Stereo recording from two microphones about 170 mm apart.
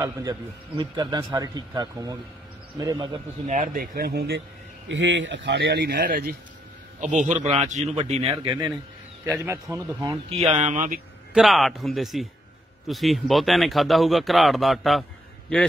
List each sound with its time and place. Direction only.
0.0 s a man's voice: 20° right (ahead or behind)
3.4 s speech: 50° right (ahead or behind); by 4.4 s 70° right (ahead or behind)
4.8 s speech: 90° right
6.0 s speech: 55° right (ahead or behind)
7.0 s a man's voice: 45° right (ahead or behind); by 8.7 s 30° right (ahead or behind)
9.3 s speech: 15° right (ahead or behind)
10.3 s speech: 40° right (ahead or behind)
11.3 s speech: centre (ahead or behind)